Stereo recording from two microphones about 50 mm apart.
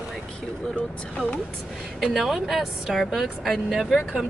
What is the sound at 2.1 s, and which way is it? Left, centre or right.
Speech, centre.